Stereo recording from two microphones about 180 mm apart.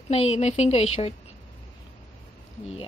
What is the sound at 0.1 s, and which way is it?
A woman's voice, 35° left (ahead or behind).